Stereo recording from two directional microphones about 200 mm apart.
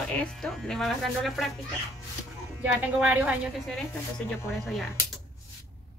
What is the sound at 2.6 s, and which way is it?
Speech, 10° right (ahead or behind).